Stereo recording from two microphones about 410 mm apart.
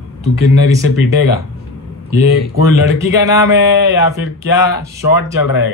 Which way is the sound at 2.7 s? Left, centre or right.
Right.